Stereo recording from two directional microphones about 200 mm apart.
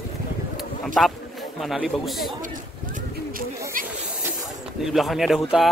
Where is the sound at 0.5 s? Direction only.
Centre (ahead or behind).